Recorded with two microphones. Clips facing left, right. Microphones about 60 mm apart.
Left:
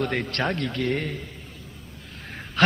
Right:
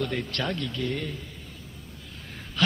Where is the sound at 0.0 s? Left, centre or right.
Left.